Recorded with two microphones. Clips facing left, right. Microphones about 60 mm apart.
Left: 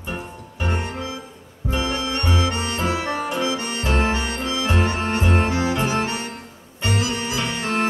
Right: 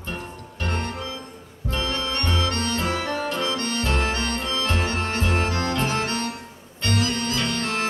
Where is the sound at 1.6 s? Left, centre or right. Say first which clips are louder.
Left 3 dB; centre.